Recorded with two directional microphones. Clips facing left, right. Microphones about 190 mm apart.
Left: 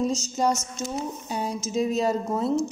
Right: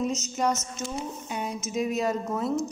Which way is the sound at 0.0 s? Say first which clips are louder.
Left 3 dB; 30° left (ahead or behind).